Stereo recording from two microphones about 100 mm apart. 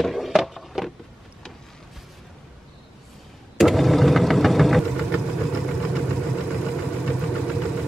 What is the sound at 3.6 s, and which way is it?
Engine, centre (ahead or behind).